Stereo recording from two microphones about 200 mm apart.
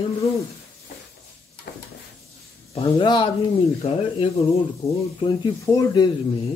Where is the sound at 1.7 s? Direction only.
55° left (ahead or behind).